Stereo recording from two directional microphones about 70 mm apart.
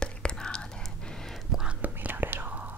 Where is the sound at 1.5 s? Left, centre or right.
Centre.